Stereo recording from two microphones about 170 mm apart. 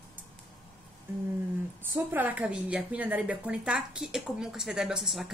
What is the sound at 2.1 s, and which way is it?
A woman's voice, 10° right (ahead or behind).